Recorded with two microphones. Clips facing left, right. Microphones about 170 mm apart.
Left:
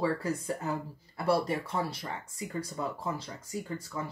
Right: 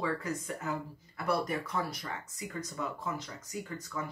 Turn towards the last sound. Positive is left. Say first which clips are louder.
# left 2 dB
turn(degrees=30)  # may be behind; listen again after turning